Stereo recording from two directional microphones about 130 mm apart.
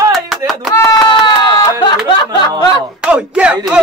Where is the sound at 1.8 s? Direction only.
35° left (ahead or behind).